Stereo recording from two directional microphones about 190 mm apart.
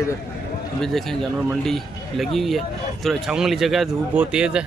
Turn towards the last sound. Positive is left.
turn(degrees=-5)  # may be behind; listen again after turning